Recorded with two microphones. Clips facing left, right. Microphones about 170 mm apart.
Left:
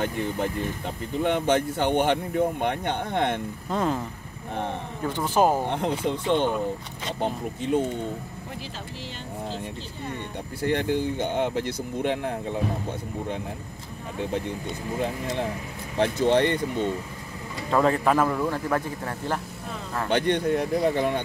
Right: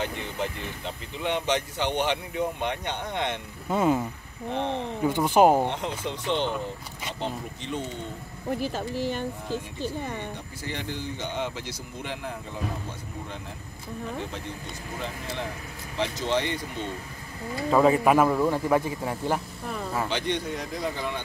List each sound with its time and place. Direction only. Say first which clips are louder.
0.0 s speech: left 4 dB; 45° left (ahead or behind)
3.7 s a man's voice: right 3 dB; 10° right (ahead or behind)
5.0 s a man's voice: right 3 dB; 15° right (ahead or behind)
5.7 s speech: left 5 dB; 50° left (ahead or behind)
8.5 s speech: right 10 dB; 50° right (ahead or behind)
10.6 s speech: left 11 dB; 55° left (ahead or behind)
16.0 s speech: left 6 dB; 55° left (ahead or behind)
17.6 s a man's voice: right 2 dB; 5° right (ahead or behind)
20.1 s speech: left 6 dB; 60° left (ahead or behind)